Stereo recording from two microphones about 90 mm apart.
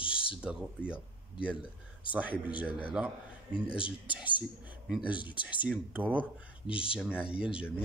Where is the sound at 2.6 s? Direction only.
10° right (ahead or behind).